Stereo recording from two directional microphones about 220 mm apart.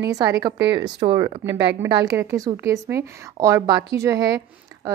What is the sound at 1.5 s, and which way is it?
Speech, 55° right (ahead or behind).